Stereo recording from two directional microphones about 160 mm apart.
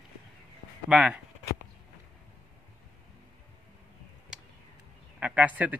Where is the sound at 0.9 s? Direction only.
5° right (ahead or behind).